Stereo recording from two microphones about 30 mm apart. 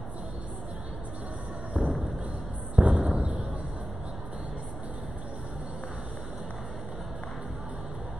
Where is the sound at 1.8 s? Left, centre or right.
Right.